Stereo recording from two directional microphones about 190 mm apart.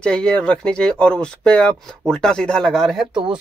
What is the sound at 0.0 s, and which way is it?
Speech, 5° left (ahead or behind).